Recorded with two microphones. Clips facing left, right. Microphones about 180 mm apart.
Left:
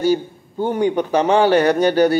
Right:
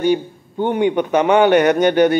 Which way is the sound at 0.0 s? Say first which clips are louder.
Right 1 dB; 40° left (ahead or behind).